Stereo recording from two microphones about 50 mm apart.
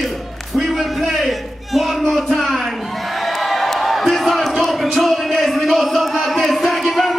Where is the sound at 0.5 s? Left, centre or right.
Centre.